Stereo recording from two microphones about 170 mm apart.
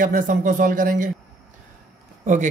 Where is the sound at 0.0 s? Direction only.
50° right (ahead or behind).